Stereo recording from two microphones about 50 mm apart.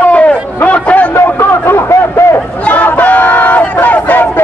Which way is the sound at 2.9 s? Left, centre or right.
Left.